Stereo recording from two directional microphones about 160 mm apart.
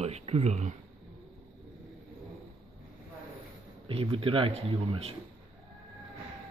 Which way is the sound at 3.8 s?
35° right (ahead or behind).